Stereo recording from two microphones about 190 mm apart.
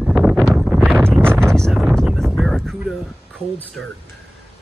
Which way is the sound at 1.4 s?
5° left (ahead or behind).